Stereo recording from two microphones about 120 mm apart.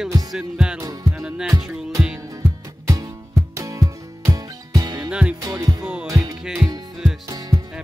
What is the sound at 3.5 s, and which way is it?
Music, 25° right (ahead or behind).